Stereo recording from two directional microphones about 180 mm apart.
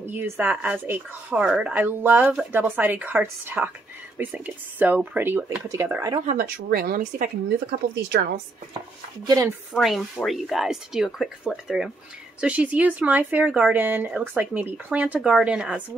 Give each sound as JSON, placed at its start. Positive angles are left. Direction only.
{"t": 0.0, "sound": "speech", "side_deg": -10}
{"t": 6.2, "sound": "speech", "side_deg": -55}
{"t": 8.1, "sound": "speech", "side_deg": -65}
{"t": 9.2, "sound": "speech", "side_deg": -20}
{"t": 9.8, "sound": "speech", "side_deg": 0}